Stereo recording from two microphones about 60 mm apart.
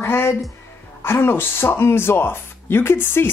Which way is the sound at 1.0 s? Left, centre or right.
Left.